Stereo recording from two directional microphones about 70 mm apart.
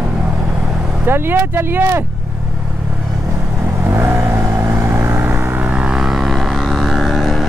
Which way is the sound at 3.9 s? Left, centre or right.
Right.